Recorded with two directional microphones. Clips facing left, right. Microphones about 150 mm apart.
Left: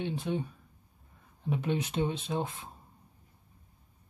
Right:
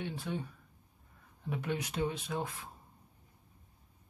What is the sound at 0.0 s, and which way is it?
Speech, 20° left (ahead or behind).